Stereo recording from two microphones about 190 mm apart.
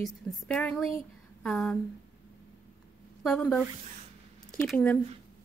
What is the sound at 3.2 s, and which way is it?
Speech, 5° left (ahead or behind).